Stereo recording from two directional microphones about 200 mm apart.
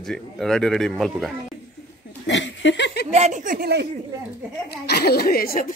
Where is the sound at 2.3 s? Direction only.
65° left (ahead or behind).